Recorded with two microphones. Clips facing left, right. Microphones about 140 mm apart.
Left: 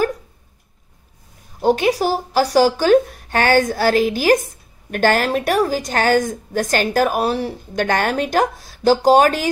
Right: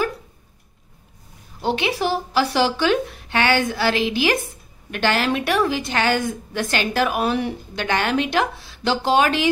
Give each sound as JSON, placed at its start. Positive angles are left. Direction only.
{"t": 1.6, "sound": "a woman's voice", "side_deg": 45}